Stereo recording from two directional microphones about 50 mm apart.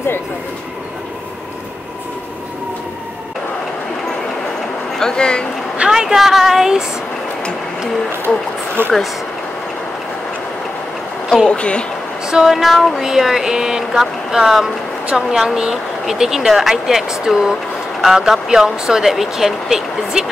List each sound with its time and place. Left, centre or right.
4.9 s speech: centre
5.8 s speech: centre
8.8 s speech: right
11.4 s speech: left
12.3 s a sound: centre
13.0 s speech: centre